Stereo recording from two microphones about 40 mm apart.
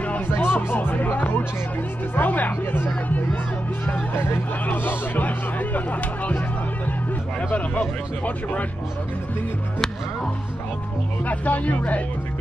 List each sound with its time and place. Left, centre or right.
0.3 s speech: left
4.1 s speech: left
4.8 s speech: left
11.2 s speech: left